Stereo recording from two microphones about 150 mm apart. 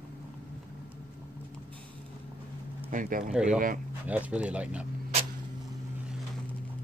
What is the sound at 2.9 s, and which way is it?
Speech, 65° right (ahead or behind).